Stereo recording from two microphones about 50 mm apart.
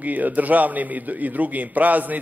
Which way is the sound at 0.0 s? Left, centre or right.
Right.